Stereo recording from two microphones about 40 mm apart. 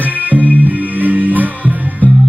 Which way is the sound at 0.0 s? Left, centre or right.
Right.